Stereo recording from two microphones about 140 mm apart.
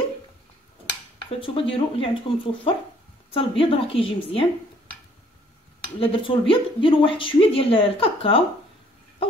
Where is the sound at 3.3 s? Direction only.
40° left (ahead or behind).